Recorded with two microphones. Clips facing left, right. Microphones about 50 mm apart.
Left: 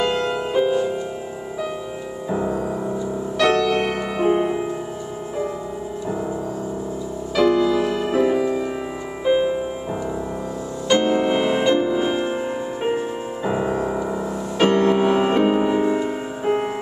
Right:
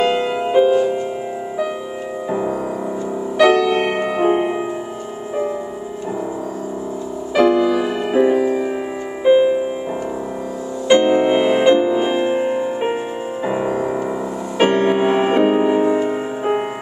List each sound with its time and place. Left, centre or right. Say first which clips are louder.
0.0 s music: right 4 dB; centre
2.2 s music: right 1 dB; centre
7.3 s music: right 3 dB; right
10.9 s music: right 5 dB; centre